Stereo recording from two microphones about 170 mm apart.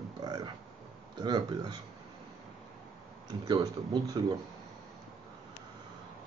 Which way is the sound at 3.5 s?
25° right (ahead or behind).